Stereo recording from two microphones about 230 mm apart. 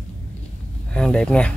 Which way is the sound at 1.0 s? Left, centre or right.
Centre.